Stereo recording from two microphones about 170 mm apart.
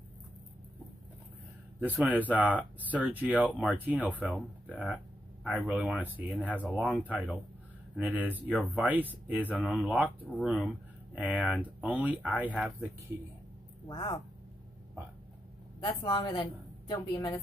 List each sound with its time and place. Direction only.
1.8 s speech: 10° right (ahead or behind)
13.8 s speech: 25° left (ahead or behind)
15.8 s a woman's voice: 30° left (ahead or behind)